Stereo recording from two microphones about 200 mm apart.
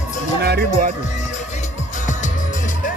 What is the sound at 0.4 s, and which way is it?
Music, 50° right (ahead or behind).